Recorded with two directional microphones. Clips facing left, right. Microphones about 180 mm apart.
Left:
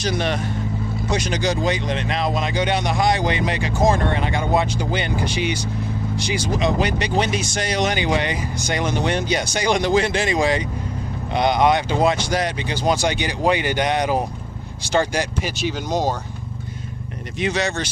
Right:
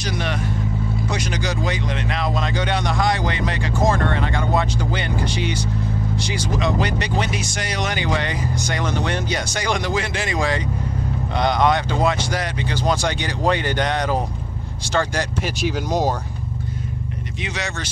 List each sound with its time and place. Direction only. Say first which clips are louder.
0.0 s vehicle: left 3 dB; 25° left (ahead or behind)
1.1 s speech: left 7 dB; 25° left (ahead or behind)
15.4 s speech: right 1 dB; 5° right (ahead or behind)
17.6 s speech: left 5 dB; 30° left (ahead or behind)